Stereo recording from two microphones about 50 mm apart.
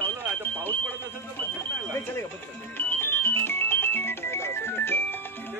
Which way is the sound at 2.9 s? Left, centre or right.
Left.